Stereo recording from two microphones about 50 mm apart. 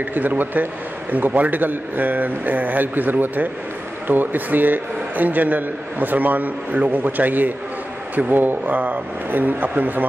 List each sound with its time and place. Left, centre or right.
0.1 s a man's voice: right